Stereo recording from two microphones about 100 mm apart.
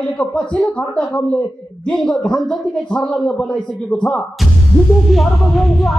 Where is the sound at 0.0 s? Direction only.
15° left (ahead or behind).